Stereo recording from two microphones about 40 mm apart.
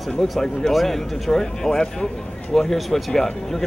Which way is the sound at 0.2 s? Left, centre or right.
Centre.